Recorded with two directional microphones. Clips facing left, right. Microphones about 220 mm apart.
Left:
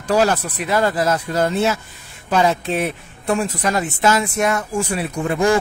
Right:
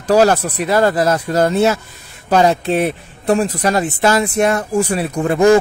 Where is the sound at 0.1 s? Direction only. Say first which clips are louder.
Right 5 dB; 40° right (ahead or behind).